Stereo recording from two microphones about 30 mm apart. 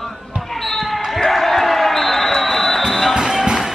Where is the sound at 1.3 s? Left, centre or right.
Centre.